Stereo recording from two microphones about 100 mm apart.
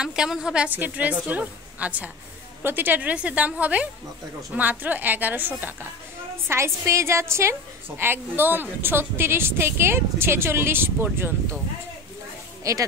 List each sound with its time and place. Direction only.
0.0 s a woman's voice: 5° right (ahead or behind); by 11.3 s 20° right (ahead or behind)
12.7 s speech: 30° right (ahead or behind)